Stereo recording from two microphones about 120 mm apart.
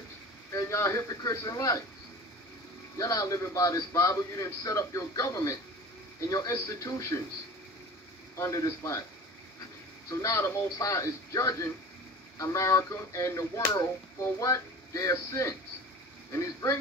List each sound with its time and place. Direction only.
0.5 s speech: 25° left (ahead or behind)
3.0 s speech: 30° left (ahead or behind)
8.4 s speech: 25° left (ahead or behind)
10.2 s speech: 25° left (ahead or behind)